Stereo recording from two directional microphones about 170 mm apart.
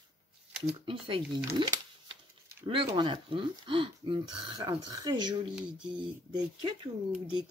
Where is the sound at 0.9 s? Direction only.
30° right (ahead or behind).